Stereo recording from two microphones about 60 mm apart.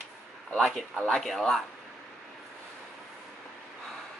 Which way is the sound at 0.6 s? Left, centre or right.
Centre.